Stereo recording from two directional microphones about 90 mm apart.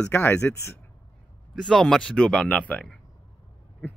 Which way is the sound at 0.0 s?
20° left (ahead or behind).